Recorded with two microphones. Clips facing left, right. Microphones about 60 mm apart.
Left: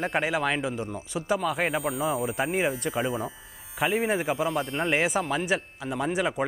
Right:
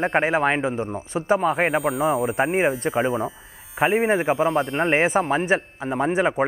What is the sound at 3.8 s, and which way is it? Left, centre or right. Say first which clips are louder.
Speech: right 6 dB; right.